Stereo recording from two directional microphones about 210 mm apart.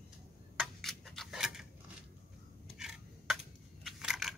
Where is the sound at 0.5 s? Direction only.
Centre (ahead or behind).